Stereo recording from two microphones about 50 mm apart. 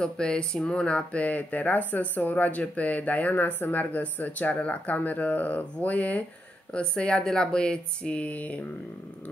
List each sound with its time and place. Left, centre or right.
0.0 s speech: centre
6.7 s speech: left